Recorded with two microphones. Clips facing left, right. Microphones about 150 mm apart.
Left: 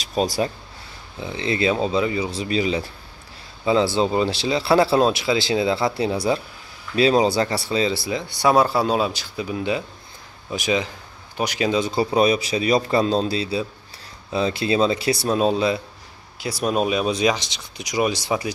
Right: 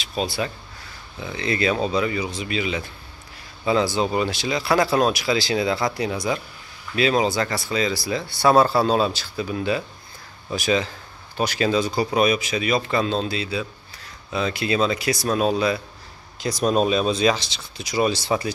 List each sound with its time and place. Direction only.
0.0 s speech: 40° left (ahead or behind)
1.2 s speech: 30° left (ahead or behind)
3.6 s speech: 25° left (ahead or behind)
16.3 s speech: 10° left (ahead or behind)